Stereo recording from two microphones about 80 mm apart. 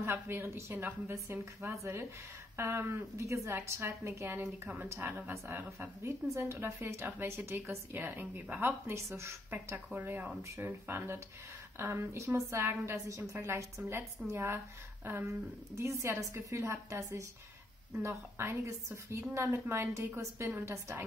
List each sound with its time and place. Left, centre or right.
0.0 s a woman's voice: right
9.9 s a woman's voice: right